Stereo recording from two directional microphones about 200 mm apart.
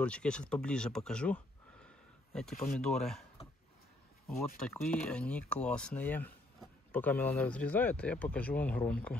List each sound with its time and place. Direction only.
0.0 s speech: 5° left (ahead or behind)
2.5 s speech: 45° left (ahead or behind)
2.8 s speech: 5° left (ahead or behind)
3.4 s a sound: 30° left (ahead or behind)
4.6 s speech: 5° left (ahead or behind)